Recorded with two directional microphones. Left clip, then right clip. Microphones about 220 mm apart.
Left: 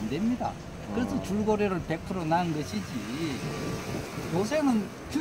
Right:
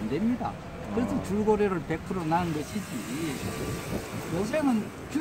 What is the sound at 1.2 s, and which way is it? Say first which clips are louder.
Speech: right 3 dB; 15° left (ahead or behind).